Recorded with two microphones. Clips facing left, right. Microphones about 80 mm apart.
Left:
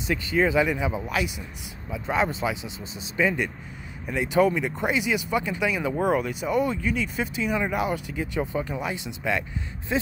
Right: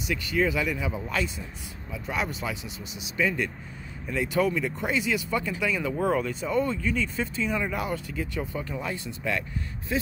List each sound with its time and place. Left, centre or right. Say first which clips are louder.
0.0 s speech: left 3 dB; left
1.9 s speech: left 6 dB; left